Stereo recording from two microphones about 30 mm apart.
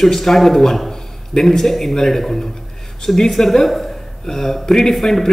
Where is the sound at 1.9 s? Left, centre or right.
Centre.